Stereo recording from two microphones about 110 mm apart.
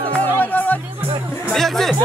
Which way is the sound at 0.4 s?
15° left (ahead or behind).